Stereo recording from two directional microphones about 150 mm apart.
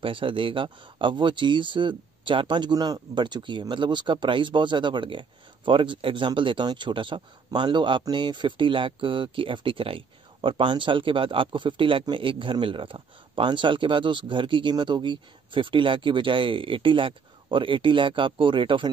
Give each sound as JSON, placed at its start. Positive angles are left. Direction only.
{"t": 0.0, "sound": "speech", "side_deg": -35}